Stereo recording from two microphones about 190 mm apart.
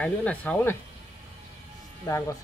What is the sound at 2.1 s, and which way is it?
Speech, 15° left (ahead or behind).